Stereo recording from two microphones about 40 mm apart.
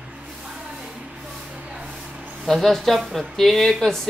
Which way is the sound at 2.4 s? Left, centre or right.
Centre.